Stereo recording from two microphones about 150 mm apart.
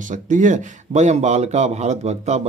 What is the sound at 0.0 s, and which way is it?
Speech, 55° right (ahead or behind).